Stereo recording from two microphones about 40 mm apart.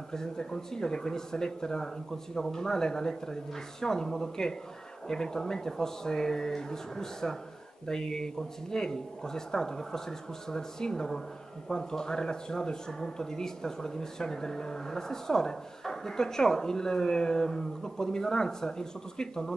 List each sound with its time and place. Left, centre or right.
0.1 s speech: centre